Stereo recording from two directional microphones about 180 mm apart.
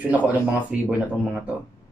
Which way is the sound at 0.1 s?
10° right (ahead or behind).